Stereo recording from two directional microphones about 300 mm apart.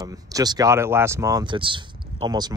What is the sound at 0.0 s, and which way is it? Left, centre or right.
Speech, centre.